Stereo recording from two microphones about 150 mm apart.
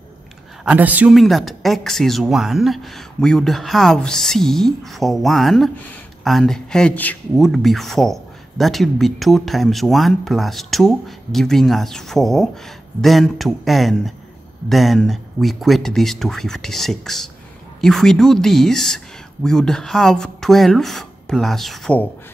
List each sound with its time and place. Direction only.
0.7 s a woman's voice: 10° right (ahead or behind)
1.1 s a man's voice: centre (ahead or behind)